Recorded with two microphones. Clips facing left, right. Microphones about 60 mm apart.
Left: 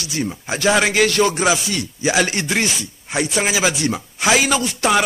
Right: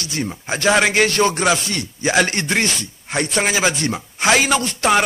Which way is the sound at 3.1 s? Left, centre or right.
Centre.